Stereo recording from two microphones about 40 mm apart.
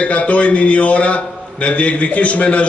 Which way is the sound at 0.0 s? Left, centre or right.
Left.